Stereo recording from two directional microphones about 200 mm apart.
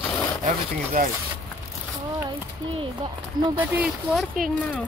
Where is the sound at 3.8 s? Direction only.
Centre (ahead or behind).